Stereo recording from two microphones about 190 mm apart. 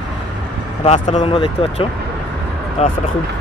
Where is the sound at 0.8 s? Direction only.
35° left (ahead or behind).